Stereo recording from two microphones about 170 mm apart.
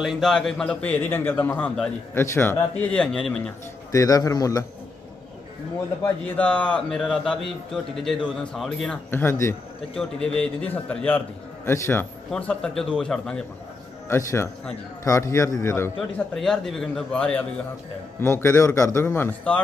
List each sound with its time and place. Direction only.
0.0 s a man's voice: centre (ahead or behind)
3.9 s a man's voice: 20° left (ahead or behind)
6.0 s a man's voice: 10° left (ahead or behind)
16.3 s a man's voice: centre (ahead or behind)